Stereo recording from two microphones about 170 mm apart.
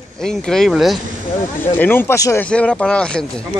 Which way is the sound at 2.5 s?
5° left (ahead or behind).